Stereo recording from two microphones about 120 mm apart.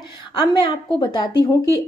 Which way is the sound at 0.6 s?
35° left (ahead or behind).